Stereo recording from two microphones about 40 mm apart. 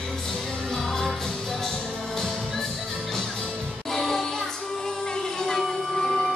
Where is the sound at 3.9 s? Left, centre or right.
Centre.